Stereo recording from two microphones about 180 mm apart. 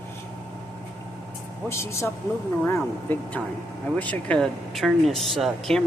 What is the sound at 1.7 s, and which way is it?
Speech, 15° left (ahead or behind).